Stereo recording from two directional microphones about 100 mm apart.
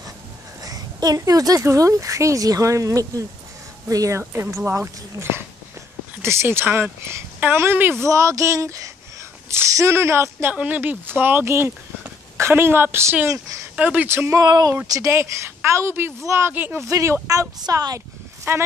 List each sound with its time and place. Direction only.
0.6 s a woman's voice: 40° right (ahead or behind)
4.2 s a woman's voice: 25° right (ahead or behind)
10.5 s a woman's voice: 15° right (ahead or behind)
14.4 s speech: 40° right (ahead or behind)
14.9 s a woman's voice: 30° right (ahead or behind)